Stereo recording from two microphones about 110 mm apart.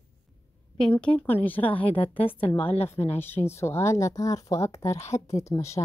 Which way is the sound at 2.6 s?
70° left (ahead or behind).